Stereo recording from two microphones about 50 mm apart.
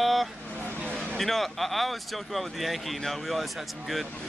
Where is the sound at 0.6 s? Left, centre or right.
Right.